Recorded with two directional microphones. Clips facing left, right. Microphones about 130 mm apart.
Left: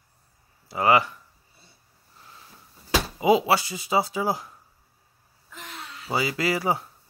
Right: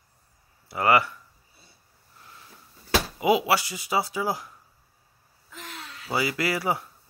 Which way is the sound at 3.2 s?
25° left (ahead or behind).